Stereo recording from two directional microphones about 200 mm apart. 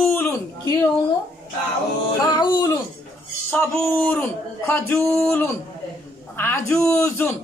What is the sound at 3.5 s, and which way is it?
A man's voice, 10° left (ahead or behind).